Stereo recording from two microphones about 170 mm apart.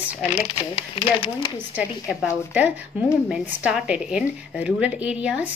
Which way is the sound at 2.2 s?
10° right (ahead or behind).